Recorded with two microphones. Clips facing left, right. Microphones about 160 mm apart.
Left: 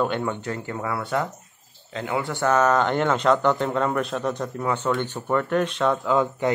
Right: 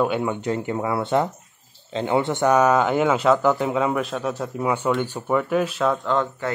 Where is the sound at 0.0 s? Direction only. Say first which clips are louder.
Right 3 dB; 10° right (ahead or behind).